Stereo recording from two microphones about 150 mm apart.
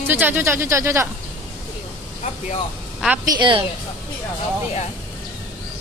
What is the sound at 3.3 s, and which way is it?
Speech, 35° right (ahead or behind).